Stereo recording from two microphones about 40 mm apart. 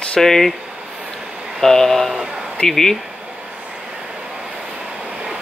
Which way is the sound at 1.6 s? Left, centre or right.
Centre.